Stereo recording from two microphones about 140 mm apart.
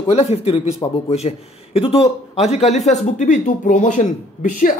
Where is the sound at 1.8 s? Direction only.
45° left (ahead or behind).